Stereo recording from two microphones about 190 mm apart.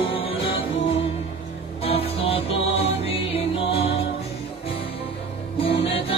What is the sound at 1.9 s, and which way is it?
Music, 30° left (ahead or behind).